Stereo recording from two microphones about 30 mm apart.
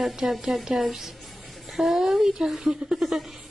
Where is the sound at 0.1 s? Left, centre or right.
Centre.